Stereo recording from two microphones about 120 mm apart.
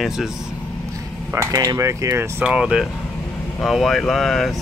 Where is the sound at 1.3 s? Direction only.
25° right (ahead or behind).